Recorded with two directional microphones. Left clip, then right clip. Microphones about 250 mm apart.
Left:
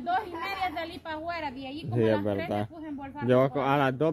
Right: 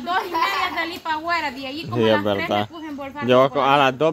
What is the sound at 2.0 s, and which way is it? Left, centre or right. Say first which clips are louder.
Speech: right 8 dB; centre.